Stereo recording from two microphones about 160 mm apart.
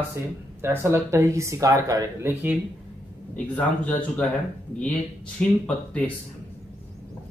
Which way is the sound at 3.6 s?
10° left (ahead or behind).